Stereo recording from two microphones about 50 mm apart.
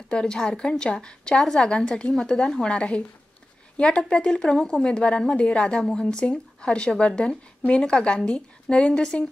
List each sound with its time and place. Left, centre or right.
0.1 s speech: centre
2.7 s a woman's voice: left